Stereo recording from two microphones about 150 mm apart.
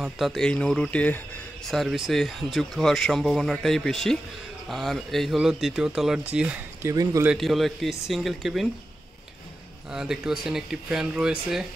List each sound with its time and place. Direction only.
0.0 s speech: centre (ahead or behind)
6.8 s speech: 20° right (ahead or behind)
7.3 s speech: centre (ahead or behind)
9.8 s speech: 5° right (ahead or behind)